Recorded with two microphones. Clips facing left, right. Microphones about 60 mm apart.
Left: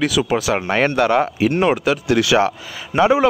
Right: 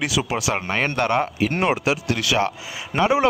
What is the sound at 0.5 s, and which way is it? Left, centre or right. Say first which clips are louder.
Speech: left 6 dB; centre.